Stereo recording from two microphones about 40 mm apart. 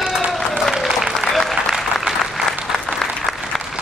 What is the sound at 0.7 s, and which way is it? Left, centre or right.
Applause, centre.